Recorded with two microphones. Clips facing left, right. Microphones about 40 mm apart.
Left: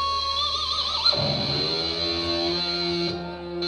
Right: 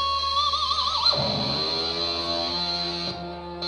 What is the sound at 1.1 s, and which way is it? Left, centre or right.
Music, centre.